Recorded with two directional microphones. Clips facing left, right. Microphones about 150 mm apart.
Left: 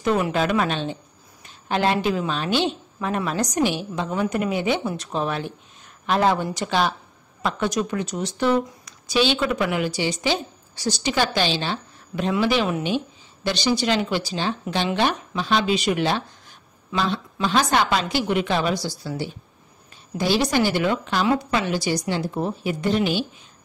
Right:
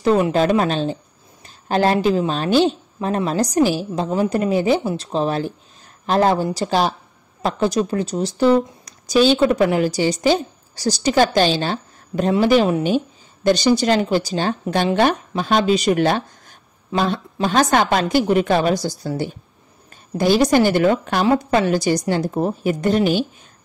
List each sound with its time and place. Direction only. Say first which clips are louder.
0.0 s speech: right 5 dB; 30° right (ahead or behind); by 23.2 s 45° right (ahead or behind)